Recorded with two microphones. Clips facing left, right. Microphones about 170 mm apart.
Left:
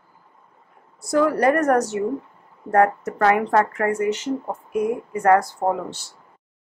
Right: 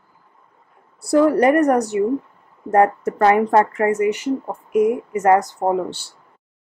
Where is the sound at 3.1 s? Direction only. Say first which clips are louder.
Right 3 dB; 25° right (ahead or behind).